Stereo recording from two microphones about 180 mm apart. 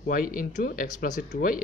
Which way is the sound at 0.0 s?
50° left (ahead or behind).